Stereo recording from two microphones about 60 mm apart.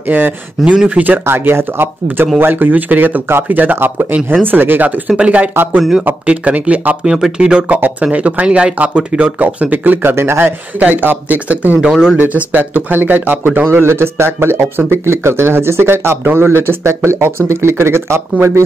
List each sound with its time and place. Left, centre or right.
0.1 s speech: right
5.5 s speech: right
5.8 s speech: centre
6.2 s speech: right
7.1 s speech: centre; by 10.1 s right
10.1 s speech: right
10.8 s speech: right
13.7 s speech: right